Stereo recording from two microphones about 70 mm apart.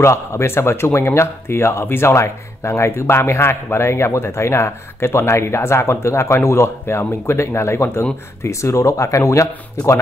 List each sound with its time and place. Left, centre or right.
0.0 s speech: left